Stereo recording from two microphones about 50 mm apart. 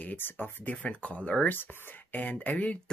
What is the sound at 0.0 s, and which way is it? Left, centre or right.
Speech, left.